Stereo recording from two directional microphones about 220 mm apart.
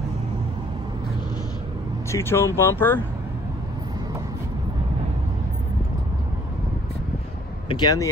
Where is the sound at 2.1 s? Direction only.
10° left (ahead or behind).